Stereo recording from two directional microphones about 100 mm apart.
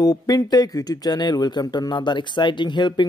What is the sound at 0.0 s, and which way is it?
Speech, 40° left (ahead or behind).